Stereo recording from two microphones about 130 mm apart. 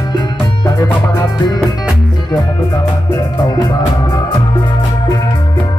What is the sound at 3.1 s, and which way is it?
Music, 30° left (ahead or behind).